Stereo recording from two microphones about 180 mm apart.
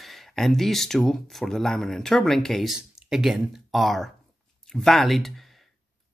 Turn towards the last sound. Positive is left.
turn(degrees=0)  # may be behind; listen again after turning